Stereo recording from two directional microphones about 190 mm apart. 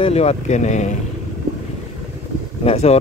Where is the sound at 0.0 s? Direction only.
35° left (ahead or behind).